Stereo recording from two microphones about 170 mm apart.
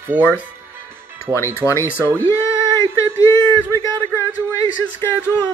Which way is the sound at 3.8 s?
15° left (ahead or behind).